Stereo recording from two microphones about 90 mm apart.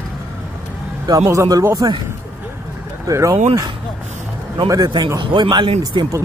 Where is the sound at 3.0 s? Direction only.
35° right (ahead or behind).